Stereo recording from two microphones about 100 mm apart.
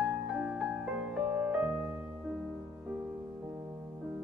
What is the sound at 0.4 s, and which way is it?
Music, 10° right (ahead or behind).